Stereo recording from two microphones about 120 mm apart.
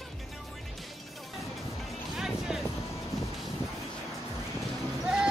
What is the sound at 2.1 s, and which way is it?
Music, 5° right (ahead or behind).